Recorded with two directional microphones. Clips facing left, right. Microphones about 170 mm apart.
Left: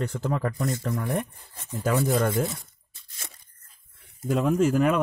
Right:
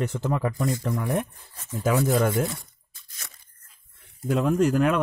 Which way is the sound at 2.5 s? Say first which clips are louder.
Right 1 dB; 25° left (ahead or behind).